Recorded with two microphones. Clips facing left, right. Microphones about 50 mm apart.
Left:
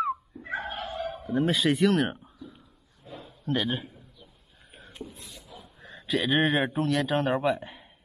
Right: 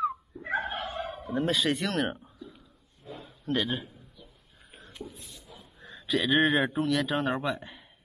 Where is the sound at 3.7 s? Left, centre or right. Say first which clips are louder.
Left 2 dB; centre.